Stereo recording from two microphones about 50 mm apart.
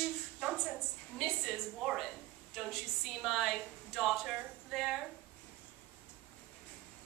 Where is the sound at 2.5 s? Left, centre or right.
Centre.